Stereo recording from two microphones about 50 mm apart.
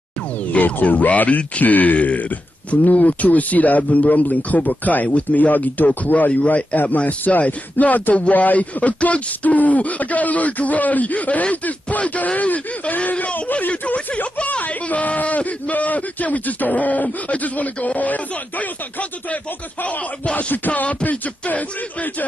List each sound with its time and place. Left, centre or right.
0.5 s speech: left